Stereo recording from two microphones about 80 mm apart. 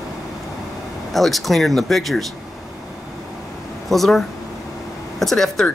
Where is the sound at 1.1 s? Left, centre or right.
Centre.